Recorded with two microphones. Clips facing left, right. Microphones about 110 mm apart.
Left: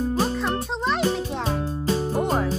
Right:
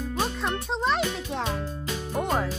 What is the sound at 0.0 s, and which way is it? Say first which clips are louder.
Music: left 5 dB; 35° left (ahead or behind).